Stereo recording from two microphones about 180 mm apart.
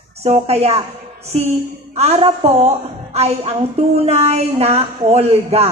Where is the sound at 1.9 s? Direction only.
35° right (ahead or behind).